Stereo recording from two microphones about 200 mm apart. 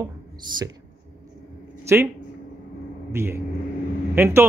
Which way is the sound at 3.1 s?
10° right (ahead or behind).